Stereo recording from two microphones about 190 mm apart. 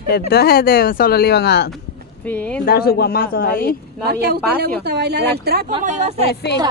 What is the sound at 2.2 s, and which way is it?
Speech, 10° left (ahead or behind).